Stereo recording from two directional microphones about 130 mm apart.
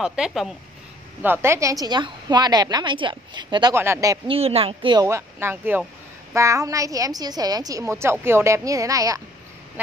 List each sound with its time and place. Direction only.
0.0 s speech: 5° right (ahead or behind)
1.2 s a woman's voice: 15° right (ahead or behind); by 3.7 s 35° right (ahead or behind)
3.7 s a woman's voice: 20° right (ahead or behind)
4.3 s a woman's voice: 50° right (ahead or behind)
5.0 s a woman's voice: 20° right (ahead or behind)